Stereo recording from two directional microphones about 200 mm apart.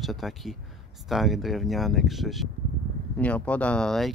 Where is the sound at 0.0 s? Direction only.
Centre (ahead or behind).